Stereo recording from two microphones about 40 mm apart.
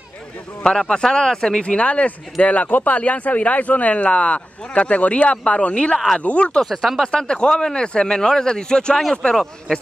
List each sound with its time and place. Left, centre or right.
0.7 s a man's voice: left
6.5 s speech: centre
7.0 s a man's voice: left